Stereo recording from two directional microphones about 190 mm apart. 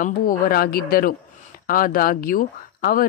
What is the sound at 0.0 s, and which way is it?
Speech, 50° left (ahead or behind).